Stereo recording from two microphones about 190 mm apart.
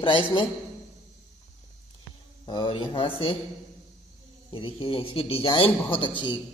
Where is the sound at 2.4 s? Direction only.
25° left (ahead or behind).